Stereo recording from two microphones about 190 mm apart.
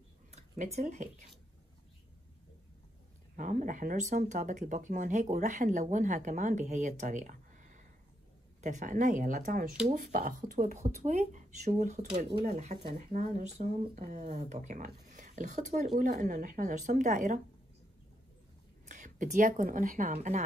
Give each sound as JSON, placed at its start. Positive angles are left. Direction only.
{"t": 0.3, "sound": "a sound", "side_deg": -35}
{"t": 3.3, "sound": "a woman's voice", "side_deg": -45}
{"t": 18.9, "sound": "speech", "side_deg": -40}